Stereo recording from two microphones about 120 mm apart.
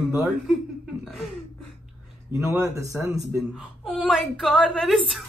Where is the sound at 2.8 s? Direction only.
25° right (ahead or behind).